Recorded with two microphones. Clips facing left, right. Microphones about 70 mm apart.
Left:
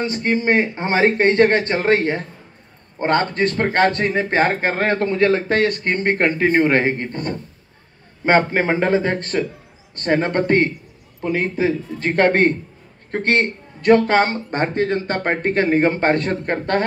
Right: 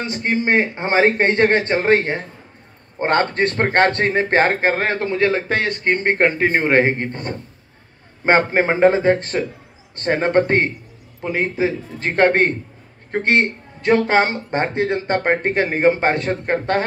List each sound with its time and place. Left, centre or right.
0.0 s a man's voice: right
4.5 s speech: centre